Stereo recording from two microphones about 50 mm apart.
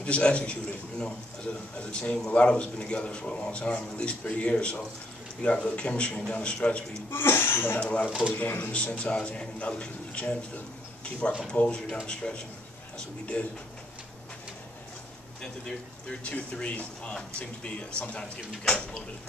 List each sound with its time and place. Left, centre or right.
0.0 s a man's voice: left
7.1 s speech: left
7.8 s speech: left
8.7 s speech: left
11.5 s speech: left
16.3 s speech: left